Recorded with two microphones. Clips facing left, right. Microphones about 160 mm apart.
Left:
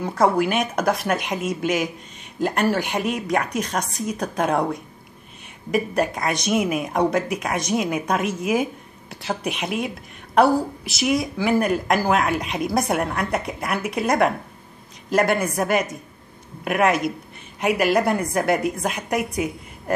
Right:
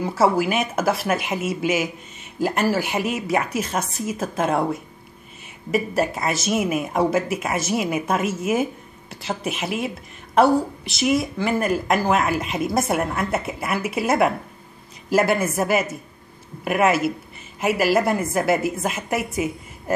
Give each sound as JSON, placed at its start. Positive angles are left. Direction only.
{"t": 0.0, "sound": "a woman's voice", "side_deg": -5}